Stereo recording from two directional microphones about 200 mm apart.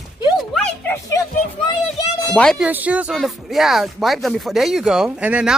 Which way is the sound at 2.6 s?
5° right (ahead or behind).